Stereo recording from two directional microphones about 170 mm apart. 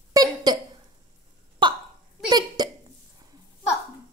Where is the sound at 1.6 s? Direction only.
30° right (ahead or behind).